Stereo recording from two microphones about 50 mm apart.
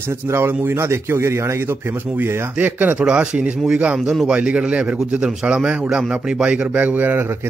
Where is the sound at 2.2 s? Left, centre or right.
Right.